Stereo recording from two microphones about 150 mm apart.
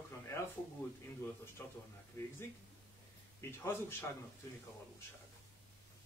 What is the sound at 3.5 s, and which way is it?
Speech, 15° left (ahead or behind).